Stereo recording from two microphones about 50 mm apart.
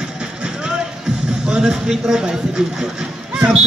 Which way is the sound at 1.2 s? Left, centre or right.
Centre.